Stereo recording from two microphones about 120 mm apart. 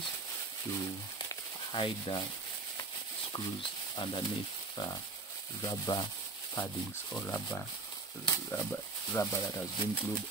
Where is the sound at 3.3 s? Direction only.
40° left (ahead or behind).